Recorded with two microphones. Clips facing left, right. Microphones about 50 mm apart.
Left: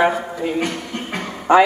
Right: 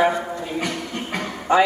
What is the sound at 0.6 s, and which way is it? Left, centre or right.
Music, left.